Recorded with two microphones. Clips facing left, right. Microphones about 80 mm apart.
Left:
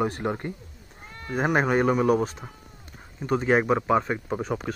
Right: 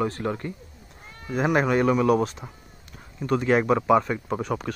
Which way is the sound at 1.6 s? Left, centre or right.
Centre.